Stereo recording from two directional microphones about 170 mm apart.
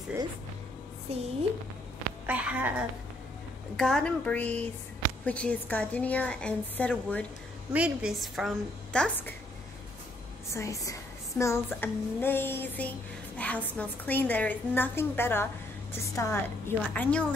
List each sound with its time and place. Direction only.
1.1 s a woman's voice: 40° right (ahead or behind)
2.2 s a woman's voice: 10° right (ahead or behind)
3.7 s speech: 5° left (ahead or behind)
7.7 s a woman's voice: 5° right (ahead or behind)
10.5 s speech: 20° left (ahead or behind)